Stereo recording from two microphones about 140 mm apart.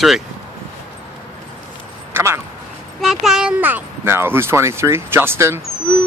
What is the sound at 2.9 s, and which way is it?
A child's voice, centre (ahead or behind).